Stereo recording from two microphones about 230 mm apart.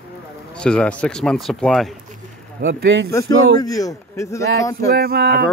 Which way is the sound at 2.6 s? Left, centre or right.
Right.